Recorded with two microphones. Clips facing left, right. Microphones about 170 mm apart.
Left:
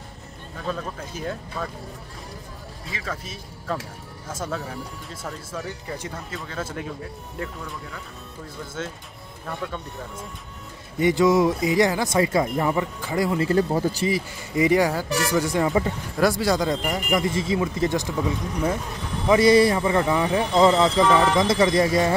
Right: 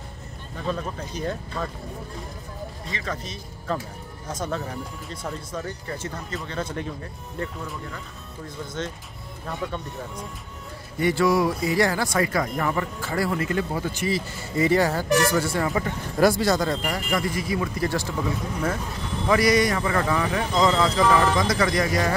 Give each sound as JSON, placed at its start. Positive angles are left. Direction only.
{"t": 0.7, "sound": "speech", "side_deg": 5}
{"t": 2.9, "sound": "speech", "side_deg": 5}
{"t": 11.0, "sound": "speech", "side_deg": 20}
{"t": 13.4, "sound": "speech", "side_deg": 35}
{"t": 14.0, "sound": "speech", "side_deg": 15}
{"t": 16.2, "sound": "speech", "side_deg": 0}
{"t": 16.4, "sound": "speech", "side_deg": 15}
{"t": 19.2, "sound": "speech", "side_deg": 25}